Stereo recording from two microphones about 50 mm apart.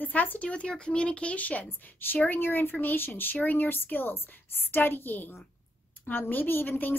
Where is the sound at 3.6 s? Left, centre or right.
Left.